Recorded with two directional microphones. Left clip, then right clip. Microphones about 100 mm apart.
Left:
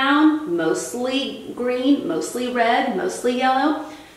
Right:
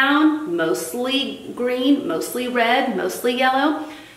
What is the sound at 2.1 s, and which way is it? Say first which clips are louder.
A woman's voice: right 1 dB; 30° right (ahead or behind).